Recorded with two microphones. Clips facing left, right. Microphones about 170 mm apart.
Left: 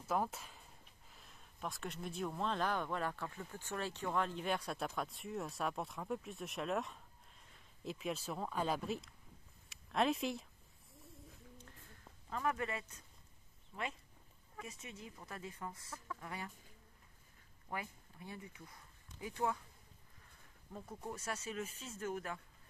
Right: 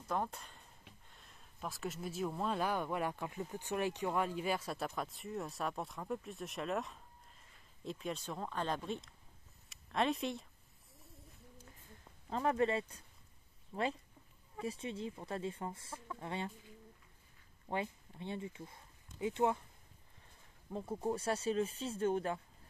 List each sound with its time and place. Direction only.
0.0 s speech: 5° left (ahead or behind)
12.3 s speech: 30° right (ahead or behind)
17.6 s speech: 25° right (ahead or behind)
20.7 s speech: 30° right (ahead or behind)